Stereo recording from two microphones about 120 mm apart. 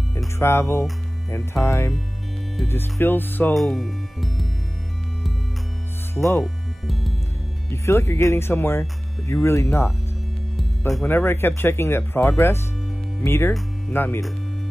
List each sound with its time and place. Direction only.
0.4 s speech: 20° left (ahead or behind)
2.7 s music: 20° left (ahead or behind)
3.5 s music: centre (ahead or behind)
6.1 s speech: 20° left (ahead or behind)
6.4 s music: centre (ahead or behind)
7.7 s speech: 25° left (ahead or behind)
11.1 s speech: 20° left (ahead or behind)
13.9 s music: 15° left (ahead or behind)